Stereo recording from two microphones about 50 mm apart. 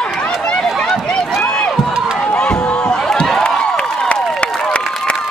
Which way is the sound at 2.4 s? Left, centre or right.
Centre.